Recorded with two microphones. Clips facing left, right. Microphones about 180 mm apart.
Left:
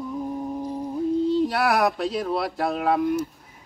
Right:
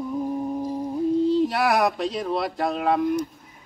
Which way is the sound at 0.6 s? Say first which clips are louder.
Right 2 dB; 5° right (ahead or behind).